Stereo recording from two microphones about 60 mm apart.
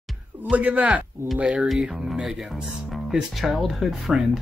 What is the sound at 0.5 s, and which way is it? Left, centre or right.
Speech, right.